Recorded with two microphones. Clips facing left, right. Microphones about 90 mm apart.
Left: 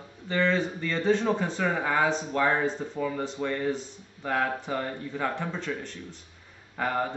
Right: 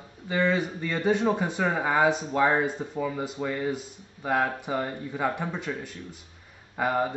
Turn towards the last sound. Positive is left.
turn(degrees=-10)  # may be behind; listen again after turning